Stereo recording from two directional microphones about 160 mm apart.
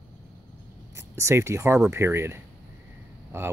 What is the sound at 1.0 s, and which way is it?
Speech, 20° right (ahead or behind).